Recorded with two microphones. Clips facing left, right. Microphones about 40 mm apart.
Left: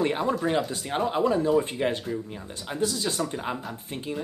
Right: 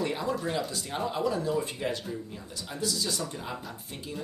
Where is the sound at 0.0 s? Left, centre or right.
Left.